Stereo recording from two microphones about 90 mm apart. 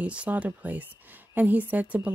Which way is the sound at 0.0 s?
15° right (ahead or behind).